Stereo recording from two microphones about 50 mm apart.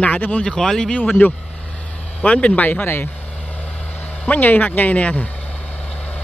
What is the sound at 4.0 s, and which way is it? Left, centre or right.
Speech, left.